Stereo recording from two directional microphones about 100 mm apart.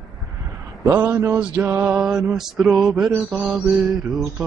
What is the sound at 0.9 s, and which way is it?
Mantra, 15° right (ahead or behind).